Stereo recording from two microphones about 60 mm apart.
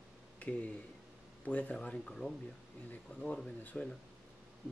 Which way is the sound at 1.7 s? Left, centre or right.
Centre.